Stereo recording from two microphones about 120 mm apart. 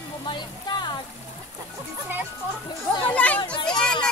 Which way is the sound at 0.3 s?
40° left (ahead or behind).